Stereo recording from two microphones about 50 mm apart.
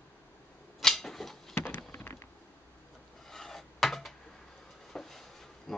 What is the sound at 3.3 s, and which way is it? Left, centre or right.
Rub, centre.